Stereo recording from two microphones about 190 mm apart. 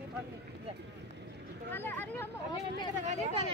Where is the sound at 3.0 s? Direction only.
35° right (ahead or behind).